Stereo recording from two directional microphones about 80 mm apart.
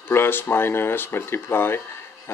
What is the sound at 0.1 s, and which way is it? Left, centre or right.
Speech, left.